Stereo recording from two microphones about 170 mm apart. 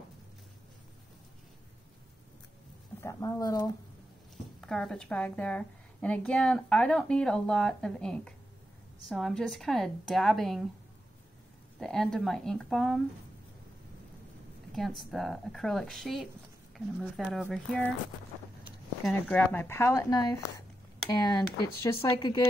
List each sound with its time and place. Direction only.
3.0 s speech: 15° left (ahead or behind)
4.6 s a woman's voice: 5° left (ahead or behind)
11.8 s a woman's voice: 5° left (ahead or behind)
14.7 s a woman's voice: centre (ahead or behind)
19.0 s speech: 10° left (ahead or behind)